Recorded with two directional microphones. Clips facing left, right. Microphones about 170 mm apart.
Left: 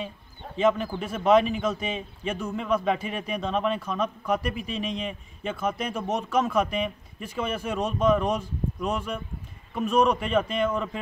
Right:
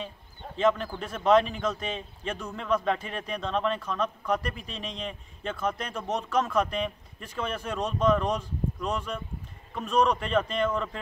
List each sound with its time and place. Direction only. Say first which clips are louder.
0.6 s speech: left 2 dB; 10° left (ahead or behind)